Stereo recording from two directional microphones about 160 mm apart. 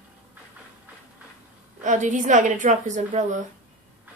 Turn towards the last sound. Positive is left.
turn(degrees=-50)  # may be behind; listen again after turning